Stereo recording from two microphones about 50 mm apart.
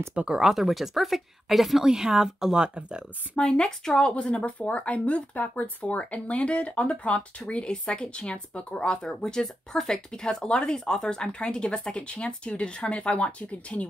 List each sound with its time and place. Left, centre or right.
0.1 s speech: right
0.4 s speech: centre
3.3 s speech: centre